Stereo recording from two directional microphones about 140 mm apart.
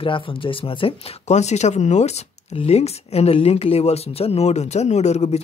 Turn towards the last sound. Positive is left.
turn(degrees=50)  # may be behind; listen again after turning